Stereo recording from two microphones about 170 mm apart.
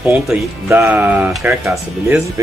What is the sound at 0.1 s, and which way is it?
Speech, 10° right (ahead or behind).